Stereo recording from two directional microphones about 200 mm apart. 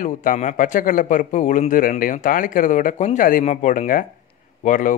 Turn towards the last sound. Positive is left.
turn(degrees=40)  # may be behind; listen again after turning